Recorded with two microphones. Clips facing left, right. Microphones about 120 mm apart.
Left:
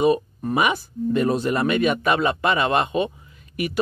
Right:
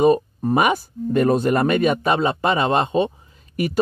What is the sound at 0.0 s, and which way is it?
Speech, 35° right (ahead or behind).